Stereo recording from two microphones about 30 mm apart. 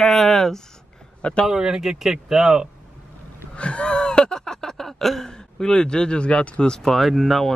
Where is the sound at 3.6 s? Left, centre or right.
Left; by 4.9 s centre.